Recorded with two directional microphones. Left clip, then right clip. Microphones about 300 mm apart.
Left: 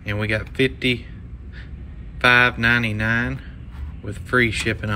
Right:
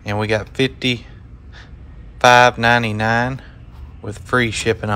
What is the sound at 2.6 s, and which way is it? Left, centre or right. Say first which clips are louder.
Speech: right 4 dB; centre.